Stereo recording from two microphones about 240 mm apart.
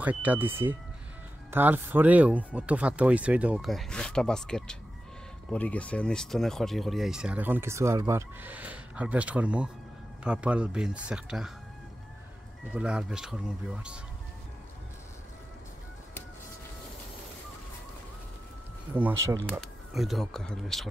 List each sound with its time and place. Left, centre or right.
0.0 s speech: centre
12.7 s speech: centre
19.4 s speech: centre